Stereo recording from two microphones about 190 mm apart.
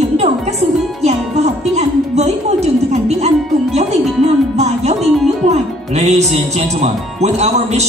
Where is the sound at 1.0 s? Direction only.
35° right (ahead or behind).